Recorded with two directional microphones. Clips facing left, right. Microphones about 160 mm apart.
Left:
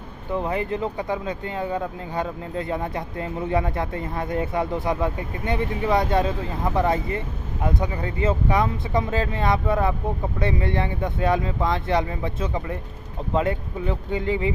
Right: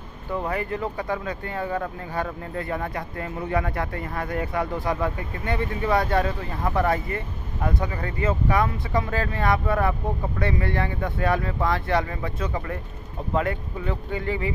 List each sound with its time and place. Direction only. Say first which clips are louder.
0.3 s speech: left 2 dB; 20° left (ahead or behind)